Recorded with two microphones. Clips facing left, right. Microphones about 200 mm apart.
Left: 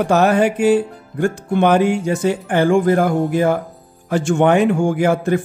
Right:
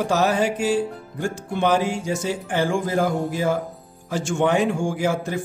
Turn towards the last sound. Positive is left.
turn(degrees=60)  # may be behind; listen again after turning